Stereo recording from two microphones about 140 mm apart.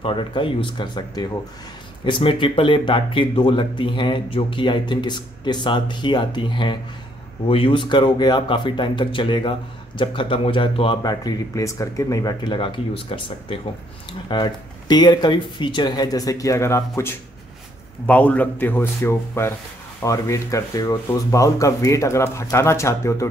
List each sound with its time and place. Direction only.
0.0 s speech: 35° left (ahead or behind); by 23.2 s 20° left (ahead or behind)